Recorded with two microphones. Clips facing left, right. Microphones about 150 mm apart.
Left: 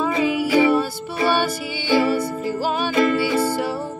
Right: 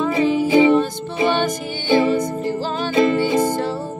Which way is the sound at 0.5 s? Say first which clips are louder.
Right 3 dB; 20° right (ahead or behind).